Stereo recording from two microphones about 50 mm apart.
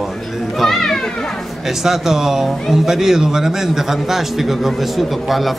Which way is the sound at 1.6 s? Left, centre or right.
Centre.